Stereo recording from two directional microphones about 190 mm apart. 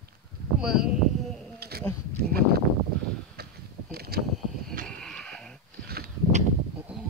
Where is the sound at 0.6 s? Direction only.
5° right (ahead or behind).